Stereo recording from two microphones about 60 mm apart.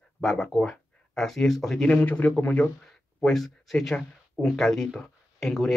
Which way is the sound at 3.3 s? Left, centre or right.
Centre.